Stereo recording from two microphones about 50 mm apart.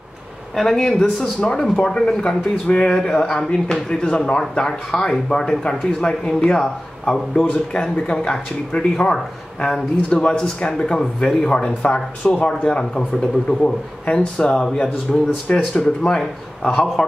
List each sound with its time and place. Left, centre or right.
0.6 s speech: centre
2.6 s a man's voice: left
3.0 s speech: centre
7.4 s speech: centre
7.7 s speech: centre
10.0 s a man's voice: centre
15.1 s speech: centre
15.7 s speech: centre